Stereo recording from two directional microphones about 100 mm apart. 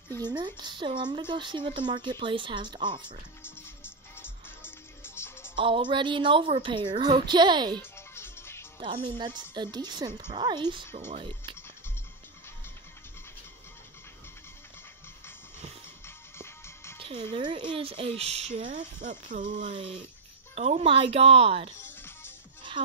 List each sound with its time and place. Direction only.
0.2 s speech: 45° right (ahead or behind)
3.4 s music: 20° left (ahead or behind)
5.6 s speech: 55° right (ahead or behind)
7.8 s music: 25° left (ahead or behind)
8.7 s speech: 60° right (ahead or behind)
11.0 s speech: 60° right (ahead or behind)
16.3 s music: 25° left (ahead or behind)
17.3 s speech: 50° right (ahead or behind); by 18.7 s 90° right
19.7 s speech: 65° right (ahead or behind)
20.5 s speech: 80° right
21.8 s music: 20° left (ahead or behind)